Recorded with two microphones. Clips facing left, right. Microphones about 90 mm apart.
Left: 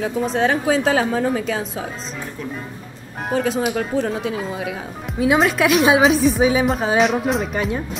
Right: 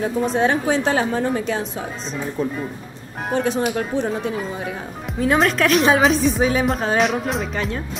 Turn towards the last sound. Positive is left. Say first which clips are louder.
# left 3 dB
turn(degrees=5)  # may be behind; listen again after turning